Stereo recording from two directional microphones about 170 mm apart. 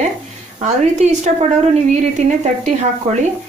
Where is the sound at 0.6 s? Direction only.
45° right (ahead or behind).